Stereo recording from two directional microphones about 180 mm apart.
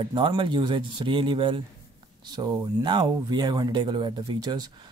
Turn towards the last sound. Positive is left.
turn(degrees=-25)  # may be behind; listen again after turning